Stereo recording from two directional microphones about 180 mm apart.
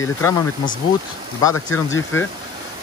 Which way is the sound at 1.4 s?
20° left (ahead or behind).